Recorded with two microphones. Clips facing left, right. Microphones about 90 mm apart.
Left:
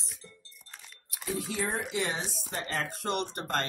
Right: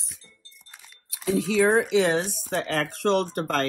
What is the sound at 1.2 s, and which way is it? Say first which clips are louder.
A woman's voice: right 12 dB; 90° right.